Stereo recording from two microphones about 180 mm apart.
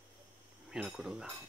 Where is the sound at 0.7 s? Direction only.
5° right (ahead or behind).